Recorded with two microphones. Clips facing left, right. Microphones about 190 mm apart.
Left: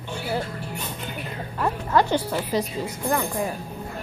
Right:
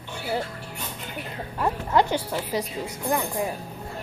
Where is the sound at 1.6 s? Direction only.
20° right (ahead or behind).